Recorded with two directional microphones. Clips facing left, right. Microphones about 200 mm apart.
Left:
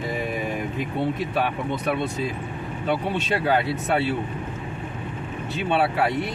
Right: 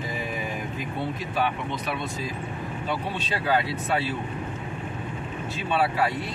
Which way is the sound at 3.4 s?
60° left (ahead or behind).